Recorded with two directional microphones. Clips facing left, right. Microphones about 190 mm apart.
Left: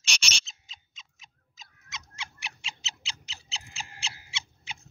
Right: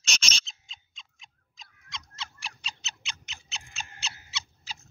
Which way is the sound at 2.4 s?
30° left (ahead or behind).